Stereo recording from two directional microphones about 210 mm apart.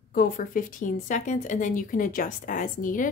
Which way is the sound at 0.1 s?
40° left (ahead or behind).